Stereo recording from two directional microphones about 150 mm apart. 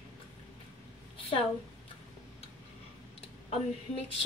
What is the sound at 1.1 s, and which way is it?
Speech, 35° left (ahead or behind).